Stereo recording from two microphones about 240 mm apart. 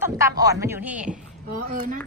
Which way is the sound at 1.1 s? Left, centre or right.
Right.